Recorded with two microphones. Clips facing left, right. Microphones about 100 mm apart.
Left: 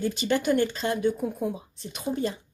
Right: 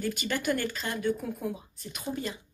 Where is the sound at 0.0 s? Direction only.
25° left (ahead or behind).